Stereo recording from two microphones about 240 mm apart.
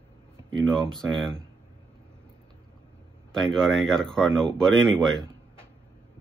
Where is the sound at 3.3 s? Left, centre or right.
Centre.